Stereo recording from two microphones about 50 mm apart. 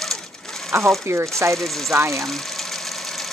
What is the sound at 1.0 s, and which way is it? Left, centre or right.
Speech, right.